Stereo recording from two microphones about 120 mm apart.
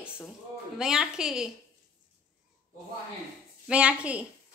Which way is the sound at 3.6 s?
10° right (ahead or behind).